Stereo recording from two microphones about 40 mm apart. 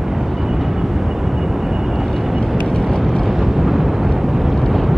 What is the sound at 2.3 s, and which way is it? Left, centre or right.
Vehicle, centre.